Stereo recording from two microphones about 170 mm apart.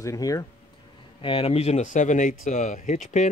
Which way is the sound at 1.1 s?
30° left (ahead or behind).